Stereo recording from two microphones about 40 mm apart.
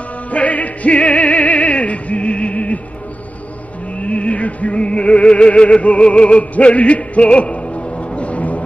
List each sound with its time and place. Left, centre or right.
0.3 s music: left
4.0 s music: left